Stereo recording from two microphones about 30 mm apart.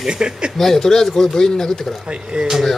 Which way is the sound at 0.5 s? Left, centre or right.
Centre.